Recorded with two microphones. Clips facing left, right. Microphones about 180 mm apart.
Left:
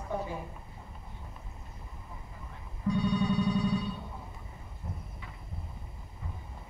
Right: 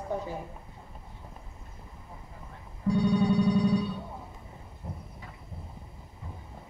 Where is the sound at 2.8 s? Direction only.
35° right (ahead or behind).